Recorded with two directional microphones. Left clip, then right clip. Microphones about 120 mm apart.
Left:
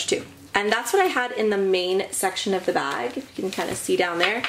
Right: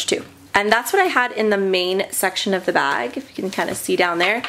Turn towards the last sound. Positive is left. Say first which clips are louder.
# right 4 dB
turn(degrees=-35)  # may be behind; listen again after turning